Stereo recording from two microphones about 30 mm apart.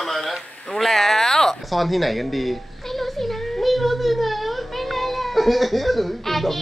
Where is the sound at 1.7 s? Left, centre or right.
Centre.